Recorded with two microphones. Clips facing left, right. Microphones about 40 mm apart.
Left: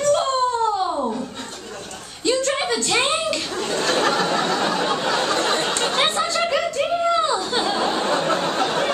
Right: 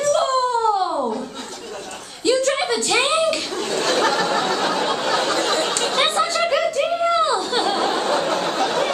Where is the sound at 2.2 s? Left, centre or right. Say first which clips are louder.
Right 2 dB; centre.